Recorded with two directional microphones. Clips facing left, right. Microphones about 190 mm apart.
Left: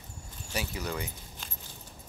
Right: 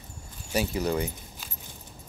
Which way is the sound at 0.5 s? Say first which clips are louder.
Right 8 dB; 30° right (ahead or behind).